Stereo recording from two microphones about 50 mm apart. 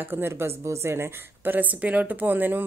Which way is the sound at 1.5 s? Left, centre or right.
Right.